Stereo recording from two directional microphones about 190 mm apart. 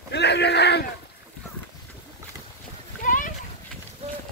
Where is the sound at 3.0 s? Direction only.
45° left (ahead or behind).